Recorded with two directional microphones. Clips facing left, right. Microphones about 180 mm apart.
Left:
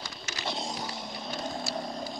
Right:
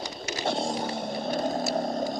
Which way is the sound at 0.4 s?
50° right (ahead or behind).